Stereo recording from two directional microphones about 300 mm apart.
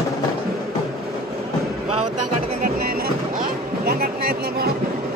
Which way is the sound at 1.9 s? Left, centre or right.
Right.